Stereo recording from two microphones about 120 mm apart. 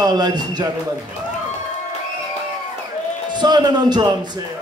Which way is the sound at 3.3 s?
35° right (ahead or behind).